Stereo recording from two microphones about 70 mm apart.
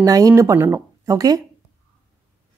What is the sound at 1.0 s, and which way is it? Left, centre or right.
Speech, right.